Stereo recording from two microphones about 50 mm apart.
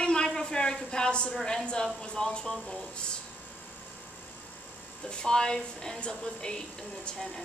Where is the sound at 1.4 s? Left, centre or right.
Centre.